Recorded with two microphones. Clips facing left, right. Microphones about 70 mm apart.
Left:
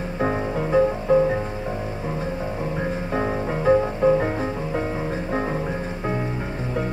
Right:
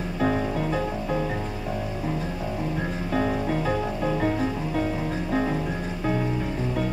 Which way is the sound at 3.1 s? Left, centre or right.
Left.